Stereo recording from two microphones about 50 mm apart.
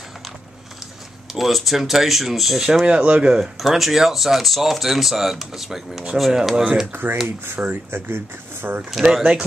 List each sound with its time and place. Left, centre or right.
1.3 s speech: centre
2.9 s speech: right
3.3 s speech: centre
6.5 s speech: centre
7.2 s speech: right
8.9 s speech: centre